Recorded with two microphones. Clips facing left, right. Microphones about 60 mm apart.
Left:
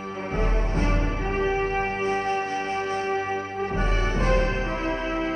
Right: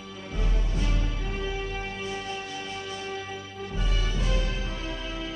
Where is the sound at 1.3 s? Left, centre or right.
Left.